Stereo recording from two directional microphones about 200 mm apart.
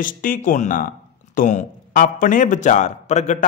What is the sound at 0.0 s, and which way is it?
Speech, 45° left (ahead or behind).